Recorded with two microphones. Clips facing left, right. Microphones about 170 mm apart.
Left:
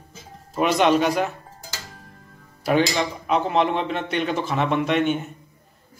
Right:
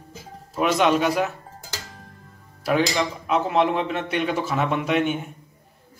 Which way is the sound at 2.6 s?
Centre (ahead or behind).